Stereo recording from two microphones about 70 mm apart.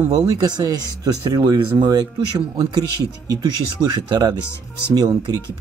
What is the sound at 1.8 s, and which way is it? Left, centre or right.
Speech, right.